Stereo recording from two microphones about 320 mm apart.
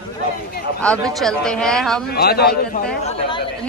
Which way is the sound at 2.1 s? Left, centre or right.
Left.